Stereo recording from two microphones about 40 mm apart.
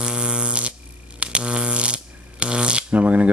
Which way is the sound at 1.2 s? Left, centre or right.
Right.